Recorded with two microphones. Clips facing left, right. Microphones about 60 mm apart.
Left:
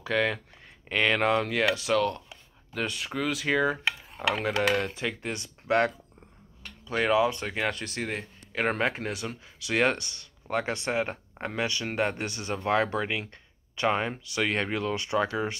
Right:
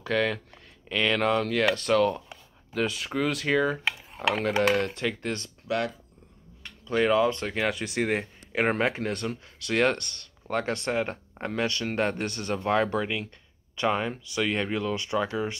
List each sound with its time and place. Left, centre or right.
0.0 s speech: centre
0.8 s speech: left
1.7 s speech: centre
4.8 s speech: centre
6.9 s speech: centre
8.0 s speech: right
8.5 s speech: centre